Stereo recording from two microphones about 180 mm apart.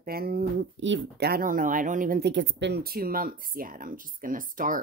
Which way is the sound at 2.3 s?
85° right.